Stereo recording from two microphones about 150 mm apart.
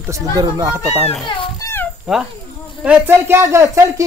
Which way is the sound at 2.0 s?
5° right (ahead or behind).